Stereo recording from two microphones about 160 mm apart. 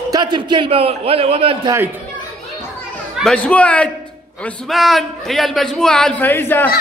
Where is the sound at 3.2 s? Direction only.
5° left (ahead or behind).